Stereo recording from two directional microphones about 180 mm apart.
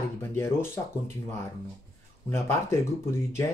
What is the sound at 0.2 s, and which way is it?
Speech, 15° left (ahead or behind).